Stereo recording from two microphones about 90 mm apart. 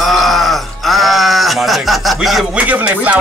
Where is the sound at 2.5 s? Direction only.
15° right (ahead or behind).